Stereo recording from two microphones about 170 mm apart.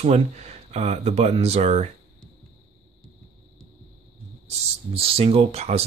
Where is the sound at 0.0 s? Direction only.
40° right (ahead or behind).